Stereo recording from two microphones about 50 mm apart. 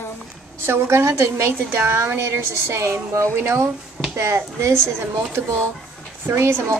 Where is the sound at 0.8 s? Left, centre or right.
Right.